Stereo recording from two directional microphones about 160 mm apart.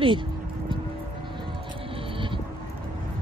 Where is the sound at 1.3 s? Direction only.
30° right (ahead or behind).